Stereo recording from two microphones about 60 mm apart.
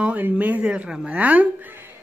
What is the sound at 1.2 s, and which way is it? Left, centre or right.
Speech, right.